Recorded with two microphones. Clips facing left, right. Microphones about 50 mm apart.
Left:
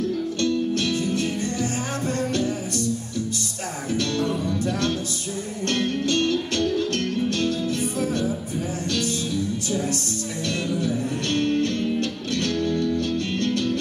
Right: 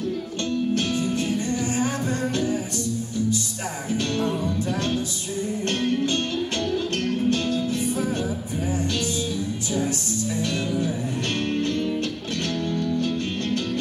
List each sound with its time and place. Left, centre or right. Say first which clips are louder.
0.4 s music: left 1 dB; right
3.9 s music: left 1 dB; right
5.7 s music: left 1 dB; right
10.4 s music: left 2 dB; right